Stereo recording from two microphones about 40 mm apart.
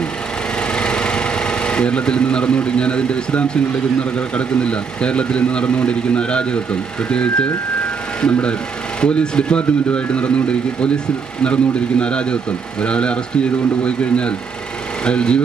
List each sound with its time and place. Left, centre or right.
0.7 s speech: left